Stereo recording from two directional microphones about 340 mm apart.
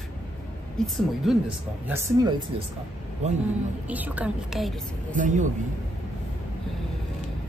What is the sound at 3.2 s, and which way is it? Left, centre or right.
Speech, centre.